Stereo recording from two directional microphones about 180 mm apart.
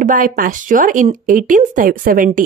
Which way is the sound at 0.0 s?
50° right (ahead or behind).